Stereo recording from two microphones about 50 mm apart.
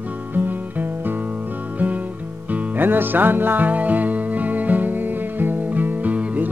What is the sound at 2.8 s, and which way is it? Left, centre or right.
Music, right.